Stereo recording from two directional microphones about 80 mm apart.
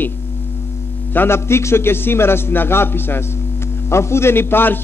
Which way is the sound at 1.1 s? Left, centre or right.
Left.